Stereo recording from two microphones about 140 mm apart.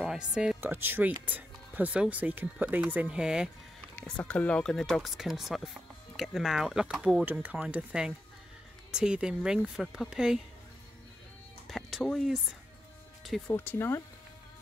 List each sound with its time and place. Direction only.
0.0 s speech: 5° right (ahead or behind)
3.9 s speech: 10° left (ahead or behind)
11.6 s music: centre (ahead or behind)
13.5 s speech: 15° left (ahead or behind)